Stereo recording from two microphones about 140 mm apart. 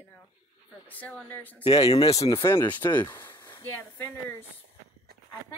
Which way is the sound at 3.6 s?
15° left (ahead or behind).